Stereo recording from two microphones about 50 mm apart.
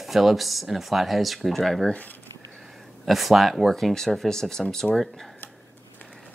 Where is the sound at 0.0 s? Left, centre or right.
Centre.